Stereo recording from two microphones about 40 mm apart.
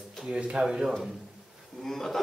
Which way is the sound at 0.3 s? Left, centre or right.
Right.